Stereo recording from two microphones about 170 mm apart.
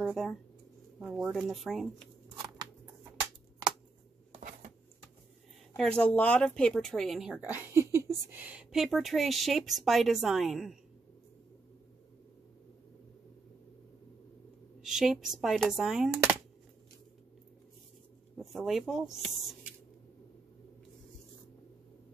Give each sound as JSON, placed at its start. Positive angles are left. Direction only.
{"t": 0.0, "sound": "speech", "side_deg": -5}
{"t": 3.6, "sound": "a sound", "side_deg": -25}
{"t": 5.8, "sound": "speech", "side_deg": 5}
{"t": 14.8, "sound": "speech", "side_deg": -5}
{"t": 18.4, "sound": "speech", "side_deg": 0}